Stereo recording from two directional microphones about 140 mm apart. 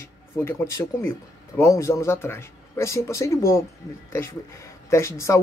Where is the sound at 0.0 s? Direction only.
15° left (ahead or behind).